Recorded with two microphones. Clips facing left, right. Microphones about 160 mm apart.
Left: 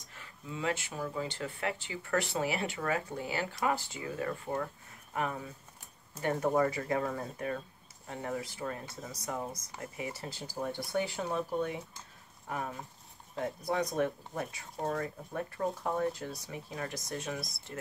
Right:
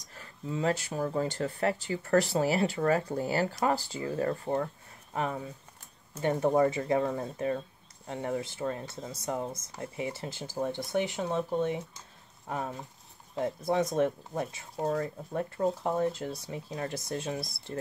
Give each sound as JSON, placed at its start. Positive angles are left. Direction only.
{"t": 0.1, "sound": "speech", "side_deg": -35}